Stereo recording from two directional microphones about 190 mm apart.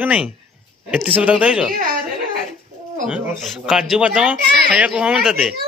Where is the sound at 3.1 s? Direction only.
Centre (ahead or behind).